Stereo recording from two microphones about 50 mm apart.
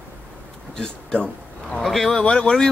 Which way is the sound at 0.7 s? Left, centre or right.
Centre.